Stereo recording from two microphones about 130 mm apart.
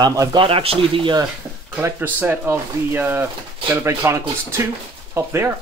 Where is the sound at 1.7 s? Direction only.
15° right (ahead or behind).